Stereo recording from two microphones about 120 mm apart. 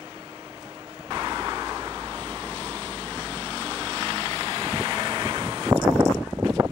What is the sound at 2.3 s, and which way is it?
Vehicle, 25° right (ahead or behind).